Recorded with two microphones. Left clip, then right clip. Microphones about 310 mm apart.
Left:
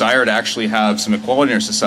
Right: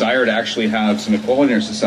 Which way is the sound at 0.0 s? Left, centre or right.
Left.